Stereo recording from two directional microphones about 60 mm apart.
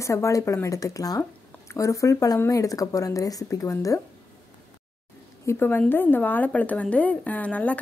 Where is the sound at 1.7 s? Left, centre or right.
Left.